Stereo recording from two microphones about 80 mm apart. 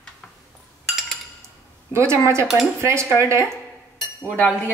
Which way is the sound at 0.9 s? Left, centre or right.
Centre.